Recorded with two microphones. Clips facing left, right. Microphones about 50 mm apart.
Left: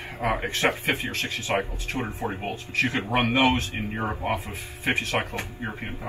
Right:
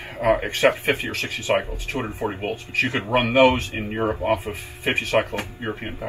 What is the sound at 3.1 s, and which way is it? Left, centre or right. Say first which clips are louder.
Speech: right 6 dB; right.